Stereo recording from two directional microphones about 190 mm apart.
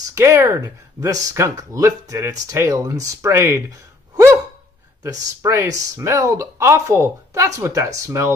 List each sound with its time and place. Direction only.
0.1 s speech: 15° right (ahead or behind)
5.4 s speech: 15° right (ahead or behind)